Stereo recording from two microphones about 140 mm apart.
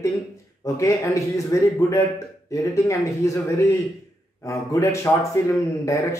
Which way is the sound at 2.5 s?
20° left (ahead or behind).